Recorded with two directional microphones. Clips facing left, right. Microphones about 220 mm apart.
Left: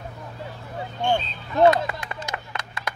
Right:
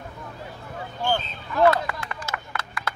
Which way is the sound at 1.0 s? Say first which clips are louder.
Left 2 dB; 25° left (ahead or behind).